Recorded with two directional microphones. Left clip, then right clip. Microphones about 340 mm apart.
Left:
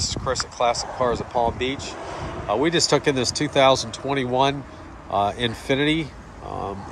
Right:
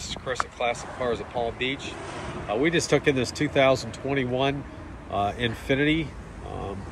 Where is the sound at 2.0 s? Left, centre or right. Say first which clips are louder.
Left 4 dB; left.